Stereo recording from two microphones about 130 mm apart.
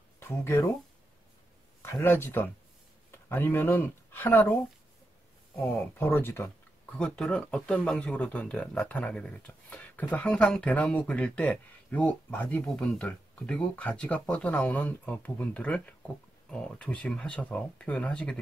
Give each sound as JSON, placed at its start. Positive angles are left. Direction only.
{"t": 0.2, "sound": "speech", "side_deg": 15}
{"t": 1.8, "sound": "speech", "side_deg": 15}
{"t": 5.9, "sound": "speech", "side_deg": 20}